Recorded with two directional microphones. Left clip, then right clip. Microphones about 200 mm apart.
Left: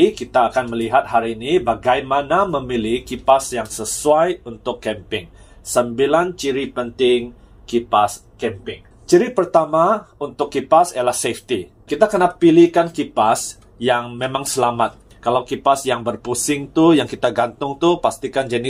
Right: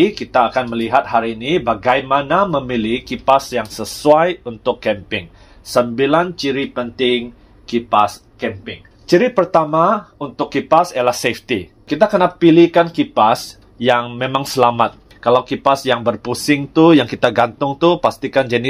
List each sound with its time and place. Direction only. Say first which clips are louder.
0.0 s speech: right 1 dB; 45° right (ahead or behind)